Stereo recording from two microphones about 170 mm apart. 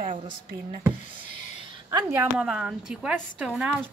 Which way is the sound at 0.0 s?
55° right (ahead or behind).